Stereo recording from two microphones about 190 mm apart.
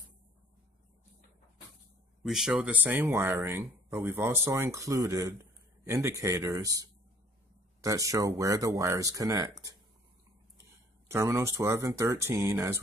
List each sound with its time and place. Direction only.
2.2 s speech: centre (ahead or behind); by 9.6 s 15° right (ahead or behind)
11.1 s speech: 15° right (ahead or behind)